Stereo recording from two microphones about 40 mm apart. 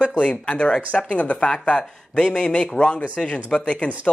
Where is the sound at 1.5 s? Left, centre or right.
Left.